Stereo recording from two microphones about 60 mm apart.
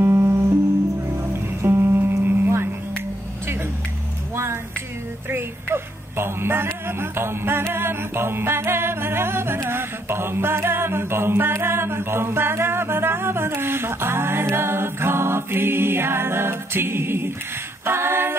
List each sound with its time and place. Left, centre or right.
0.0 s music: right
5.3 s music: right
9.7 s a capella: right